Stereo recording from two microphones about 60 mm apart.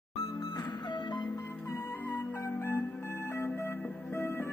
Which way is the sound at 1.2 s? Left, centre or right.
Left.